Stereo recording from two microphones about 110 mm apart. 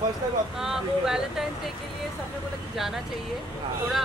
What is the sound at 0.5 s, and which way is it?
Speech, 5° right (ahead or behind).